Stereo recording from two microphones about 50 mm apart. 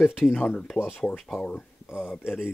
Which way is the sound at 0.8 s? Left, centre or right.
Left.